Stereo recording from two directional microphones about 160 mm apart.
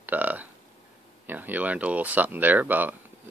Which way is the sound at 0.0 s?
10° right (ahead or behind).